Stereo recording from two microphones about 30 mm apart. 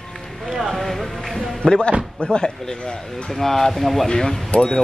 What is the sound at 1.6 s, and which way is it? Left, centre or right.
Speech, left.